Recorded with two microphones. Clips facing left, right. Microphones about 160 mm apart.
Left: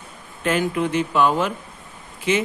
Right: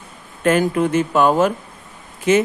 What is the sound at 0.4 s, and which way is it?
Speech, 45° right (ahead or behind).